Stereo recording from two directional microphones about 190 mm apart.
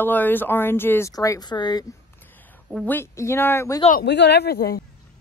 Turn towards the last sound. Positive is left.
turn(degrees=55)  # may be behind; listen again after turning